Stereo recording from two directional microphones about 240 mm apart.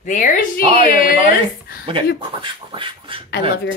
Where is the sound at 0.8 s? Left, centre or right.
Left.